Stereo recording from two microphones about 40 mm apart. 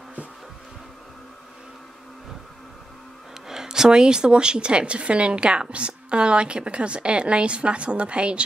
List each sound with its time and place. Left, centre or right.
3.4 s a woman's voice: centre